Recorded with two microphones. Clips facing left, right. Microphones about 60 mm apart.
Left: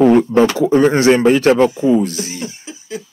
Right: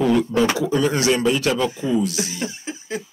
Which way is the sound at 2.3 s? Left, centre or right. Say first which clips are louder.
Even; right.